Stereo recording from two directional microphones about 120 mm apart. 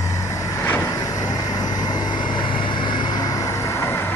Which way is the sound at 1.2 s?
30° left (ahead or behind).